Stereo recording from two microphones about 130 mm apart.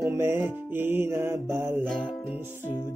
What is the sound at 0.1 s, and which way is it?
Music, 20° right (ahead or behind).